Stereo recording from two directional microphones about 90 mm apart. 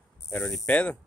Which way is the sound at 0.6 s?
15° left (ahead or behind).